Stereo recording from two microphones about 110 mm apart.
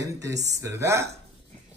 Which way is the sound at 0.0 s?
30° right (ahead or behind).